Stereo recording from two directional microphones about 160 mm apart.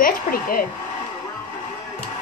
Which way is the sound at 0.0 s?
65° left (ahead or behind).